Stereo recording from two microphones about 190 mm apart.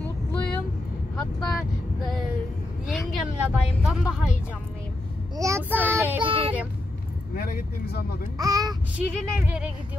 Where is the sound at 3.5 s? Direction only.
5° right (ahead or behind).